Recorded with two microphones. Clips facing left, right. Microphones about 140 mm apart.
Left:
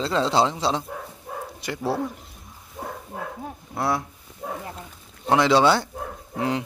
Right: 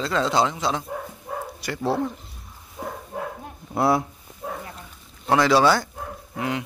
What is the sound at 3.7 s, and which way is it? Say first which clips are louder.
Speech: right 5 dB; 25° right (ahead or behind).